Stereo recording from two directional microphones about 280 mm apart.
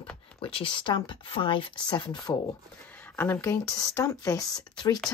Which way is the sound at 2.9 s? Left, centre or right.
Centre.